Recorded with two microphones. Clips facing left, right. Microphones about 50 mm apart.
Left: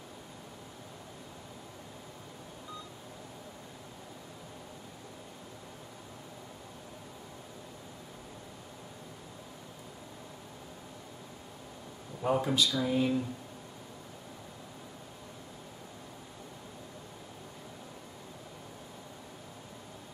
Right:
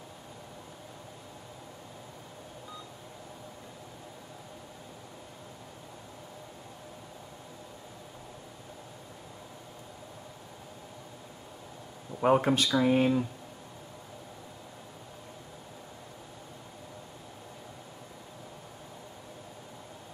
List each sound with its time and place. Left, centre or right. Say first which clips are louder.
12.2 s speech: right 4 dB; right